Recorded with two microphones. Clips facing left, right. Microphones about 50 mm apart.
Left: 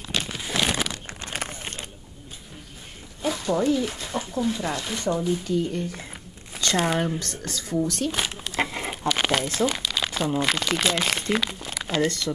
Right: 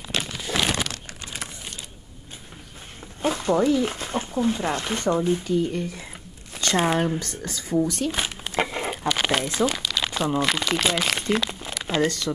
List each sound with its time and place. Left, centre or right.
0.2 s crumpling: centre
1.0 s crumpling: left
3.2 s speech: right
6.7 s speech: centre
8.1 s a sound: centre
9.0 s speech: centre
10.0 s crumpling: centre
10.4 s speech: centre
11.8 s a sound: centre